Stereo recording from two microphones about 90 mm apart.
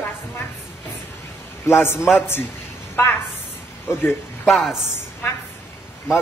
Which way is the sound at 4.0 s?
25° left (ahead or behind).